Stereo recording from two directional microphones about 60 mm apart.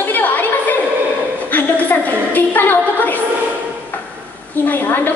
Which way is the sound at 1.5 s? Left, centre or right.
Left.